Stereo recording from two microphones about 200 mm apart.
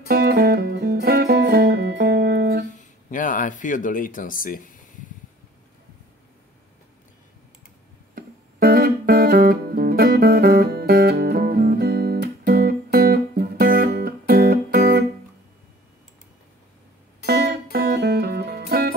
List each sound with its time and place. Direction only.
0.1 s music: 50° right (ahead or behind)
2.7 s speech: 40° left (ahead or behind)
8.1 s music: 50° right (ahead or behind)
17.3 s music: 50° right (ahead or behind)